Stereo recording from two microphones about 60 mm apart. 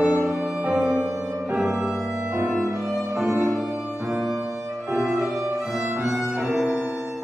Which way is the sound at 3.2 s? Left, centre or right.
Right.